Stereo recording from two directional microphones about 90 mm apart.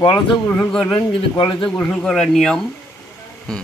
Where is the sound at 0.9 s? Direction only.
50° left (ahead or behind).